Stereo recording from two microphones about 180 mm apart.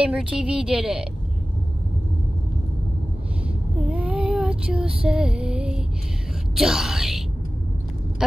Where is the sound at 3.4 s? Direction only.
10° right (ahead or behind).